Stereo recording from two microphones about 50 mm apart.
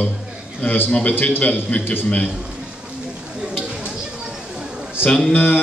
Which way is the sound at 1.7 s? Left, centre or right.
Left.